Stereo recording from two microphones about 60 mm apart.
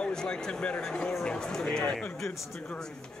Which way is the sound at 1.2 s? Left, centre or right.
Centre.